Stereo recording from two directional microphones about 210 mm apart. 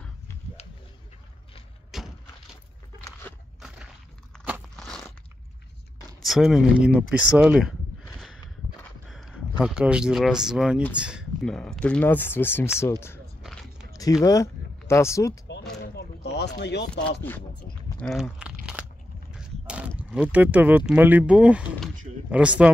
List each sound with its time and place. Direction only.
1.9 s vehicle: centre (ahead or behind)
3.3 s crunch: 10° left (ahead or behind)
3.6 s a sound: 5° right (ahead or behind)
4.5 s crunch: centre (ahead or behind)
6.2 s speech: centre (ahead or behind)
9.1 s speech: 5° right (ahead or behind)
13.4 s biting: centre (ahead or behind)
13.9 s speech: 15° left (ahead or behind)
15.9 s a sound: 50° left (ahead or behind)
17.8 s biting: 5° left (ahead or behind)
19.3 s a sound: 5° right (ahead or behind)
20.0 s speech: 5° right (ahead or behind)